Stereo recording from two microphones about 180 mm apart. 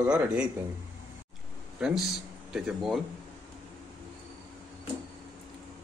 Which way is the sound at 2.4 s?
5° right (ahead or behind).